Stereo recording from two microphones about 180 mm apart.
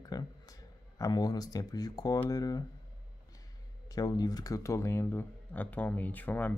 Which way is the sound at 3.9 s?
20° left (ahead or behind).